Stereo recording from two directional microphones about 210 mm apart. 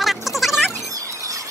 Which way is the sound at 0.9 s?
15° right (ahead or behind).